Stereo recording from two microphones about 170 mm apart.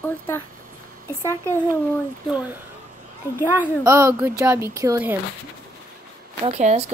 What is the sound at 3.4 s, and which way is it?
Speech, 15° right (ahead or behind).